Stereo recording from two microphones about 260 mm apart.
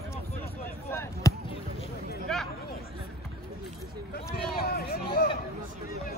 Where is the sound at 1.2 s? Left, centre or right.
Centre.